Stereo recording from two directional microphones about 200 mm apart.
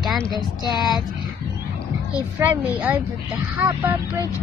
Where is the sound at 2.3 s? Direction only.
10° right (ahead or behind).